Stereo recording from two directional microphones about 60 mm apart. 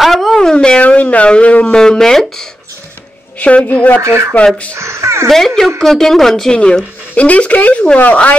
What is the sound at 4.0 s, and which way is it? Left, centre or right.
Speech, right.